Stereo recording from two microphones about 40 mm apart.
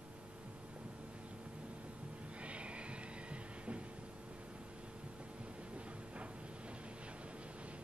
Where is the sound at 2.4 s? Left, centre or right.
Right.